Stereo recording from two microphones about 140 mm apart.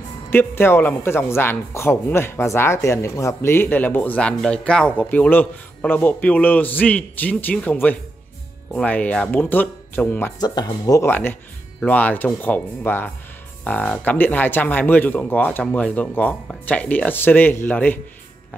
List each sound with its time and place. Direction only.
0.3 s speech: 15° left (ahead or behind)
10.4 s speech: 30° left (ahead or behind)
11.1 s speech: 15° left (ahead or behind)